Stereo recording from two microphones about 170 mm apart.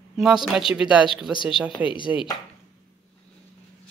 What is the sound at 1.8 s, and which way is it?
Speech, 30° left (ahead or behind).